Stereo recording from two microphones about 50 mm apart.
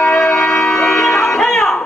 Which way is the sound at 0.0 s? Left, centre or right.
Left.